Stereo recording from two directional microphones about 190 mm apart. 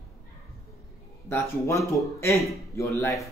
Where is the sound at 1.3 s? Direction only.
15° left (ahead or behind).